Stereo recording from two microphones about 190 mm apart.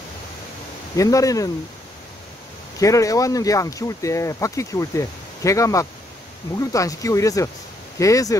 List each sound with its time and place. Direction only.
0.9 s speech: 15° left (ahead or behind)
2.8 s speech: 15° left (ahead or behind)